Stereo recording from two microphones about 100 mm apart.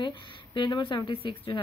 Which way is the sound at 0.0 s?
50° left (ahead or behind).